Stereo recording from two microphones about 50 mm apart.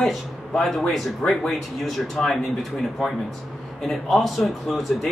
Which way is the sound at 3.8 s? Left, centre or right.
Centre.